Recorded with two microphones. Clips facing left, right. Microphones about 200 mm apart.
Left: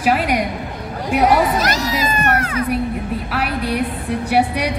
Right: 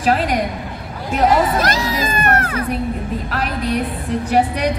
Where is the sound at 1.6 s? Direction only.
55° right (ahead or behind).